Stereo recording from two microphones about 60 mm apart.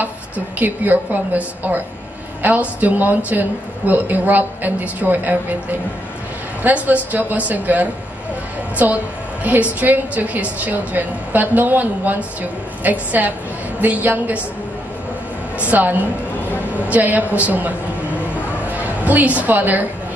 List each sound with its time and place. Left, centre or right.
0.6 s a woman's voice: right
15.7 s speech: right
18.7 s a sound: right
19.4 s speech: right